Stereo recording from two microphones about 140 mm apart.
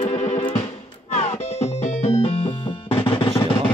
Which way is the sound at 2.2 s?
40° left (ahead or behind).